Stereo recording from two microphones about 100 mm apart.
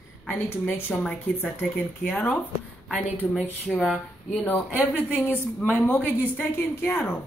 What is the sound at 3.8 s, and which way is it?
Speech, centre (ahead or behind).